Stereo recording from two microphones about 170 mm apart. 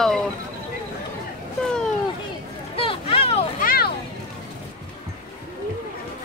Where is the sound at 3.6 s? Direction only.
65° left (ahead or behind).